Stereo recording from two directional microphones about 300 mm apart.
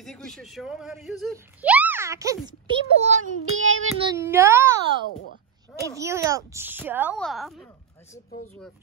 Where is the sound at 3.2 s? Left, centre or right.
Right.